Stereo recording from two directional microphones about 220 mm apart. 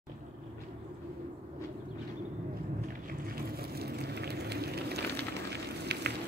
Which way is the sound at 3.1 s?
40° right (ahead or behind).